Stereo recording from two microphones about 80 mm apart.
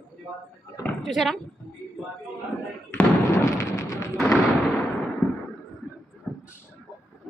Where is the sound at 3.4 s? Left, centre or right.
Left.